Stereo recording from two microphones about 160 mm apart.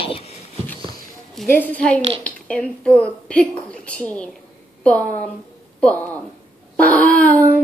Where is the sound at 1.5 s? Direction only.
10° left (ahead or behind).